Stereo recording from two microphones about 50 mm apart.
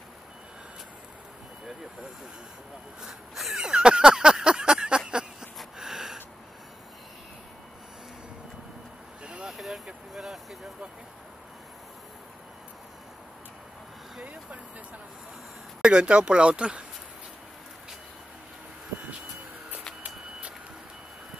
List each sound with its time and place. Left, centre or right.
3.0 s a sound: centre
9.2 s vehicle: centre
9.5 s vehicle: centre
14.2 s vehicle: right
15.8 s speech: centre